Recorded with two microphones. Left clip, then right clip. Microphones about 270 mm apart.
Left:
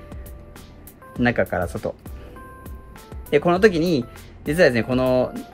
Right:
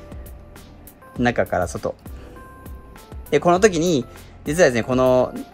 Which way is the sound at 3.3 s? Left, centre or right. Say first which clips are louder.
Right 1 dB; centre.